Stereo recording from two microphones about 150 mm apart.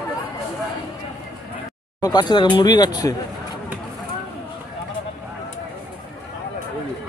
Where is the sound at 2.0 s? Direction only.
25° left (ahead or behind).